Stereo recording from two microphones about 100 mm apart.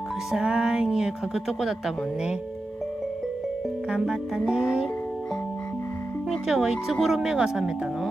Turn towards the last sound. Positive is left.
turn(degrees=-5)  # may be behind; listen again after turning